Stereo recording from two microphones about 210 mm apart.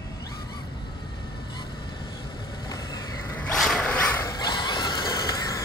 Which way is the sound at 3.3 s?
Centre (ahead or behind).